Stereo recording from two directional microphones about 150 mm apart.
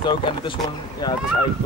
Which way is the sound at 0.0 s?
30° left (ahead or behind).